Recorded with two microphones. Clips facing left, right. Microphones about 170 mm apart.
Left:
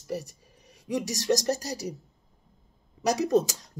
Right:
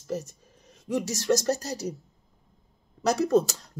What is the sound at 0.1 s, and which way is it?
Speech, 15° left (ahead or behind).